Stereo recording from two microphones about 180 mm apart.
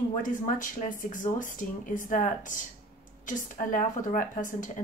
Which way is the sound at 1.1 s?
45° left (ahead or behind).